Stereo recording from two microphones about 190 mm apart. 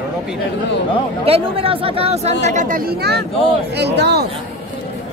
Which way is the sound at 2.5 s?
45° right (ahead or behind).